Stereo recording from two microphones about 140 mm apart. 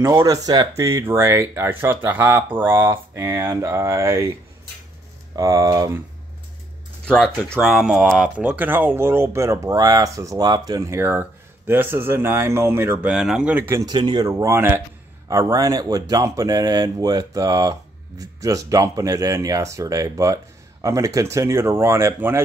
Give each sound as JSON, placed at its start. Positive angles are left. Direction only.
{"t": 0.0, "sound": "speech", "side_deg": -20}
{"t": 5.3, "sound": "speech", "side_deg": -25}
{"t": 7.6, "sound": "speech", "side_deg": 0}
{"t": 13.1, "sound": "speech", "side_deg": -5}
{"t": 13.8, "sound": "speech", "side_deg": -30}